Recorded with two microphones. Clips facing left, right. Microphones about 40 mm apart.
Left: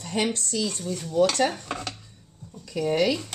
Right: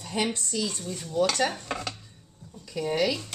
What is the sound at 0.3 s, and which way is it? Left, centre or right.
Speech, centre.